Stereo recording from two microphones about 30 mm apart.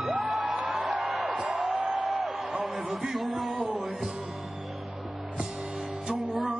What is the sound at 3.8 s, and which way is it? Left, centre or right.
Music, centre.